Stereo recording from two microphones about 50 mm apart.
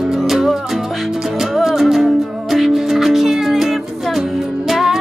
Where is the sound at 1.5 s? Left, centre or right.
Centre.